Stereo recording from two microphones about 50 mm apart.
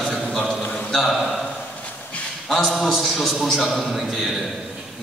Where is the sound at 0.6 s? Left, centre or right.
Left.